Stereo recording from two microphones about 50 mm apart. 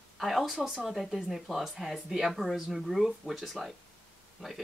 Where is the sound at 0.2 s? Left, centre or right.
Centre.